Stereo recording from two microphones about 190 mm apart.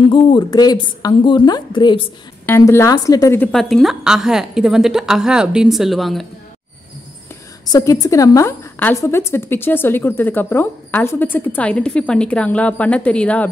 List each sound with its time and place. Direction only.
0.1 s a woman's voice: 25° left (ahead or behind)
2.4 s a woman's voice: 10° left (ahead or behind)
3.5 s a woman's voice: centre (ahead or behind)
7.7 s a woman's voice: 20° left (ahead or behind)